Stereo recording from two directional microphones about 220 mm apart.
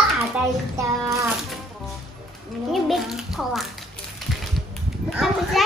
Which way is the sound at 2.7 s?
Centre (ahead or behind).